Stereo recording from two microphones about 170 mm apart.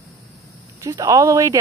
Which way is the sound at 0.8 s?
20° right (ahead or behind).